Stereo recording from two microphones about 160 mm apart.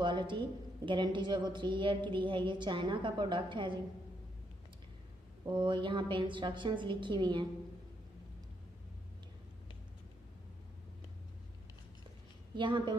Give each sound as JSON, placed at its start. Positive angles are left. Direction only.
{"t": 0.0, "sound": "a woman's voice", "side_deg": -30}
{"t": 5.4, "sound": "a woman's voice", "side_deg": -30}
{"t": 12.5, "sound": "a woman's voice", "side_deg": -30}